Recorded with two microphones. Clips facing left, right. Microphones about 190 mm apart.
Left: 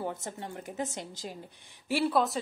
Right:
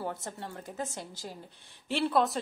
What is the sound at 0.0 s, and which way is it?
A woman's voice, 20° left (ahead or behind).